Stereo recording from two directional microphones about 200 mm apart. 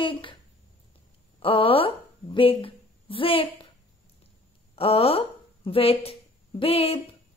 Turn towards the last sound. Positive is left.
turn(degrees=30)  # may be behind; listen again after turning